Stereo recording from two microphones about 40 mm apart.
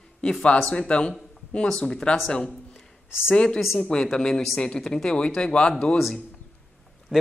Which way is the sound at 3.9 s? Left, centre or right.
Centre.